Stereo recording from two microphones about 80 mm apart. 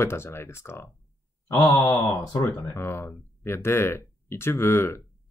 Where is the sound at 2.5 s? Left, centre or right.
Left.